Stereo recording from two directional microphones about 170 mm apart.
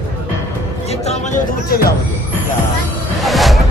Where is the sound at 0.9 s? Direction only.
40° left (ahead or behind).